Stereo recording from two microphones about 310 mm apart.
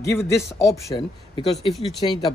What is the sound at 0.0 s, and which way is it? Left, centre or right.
Speech, centre.